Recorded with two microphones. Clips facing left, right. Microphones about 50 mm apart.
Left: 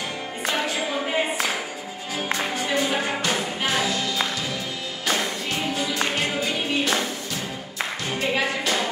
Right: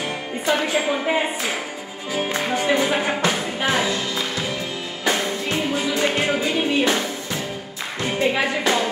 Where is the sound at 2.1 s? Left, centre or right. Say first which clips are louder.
Right 4 dB; right.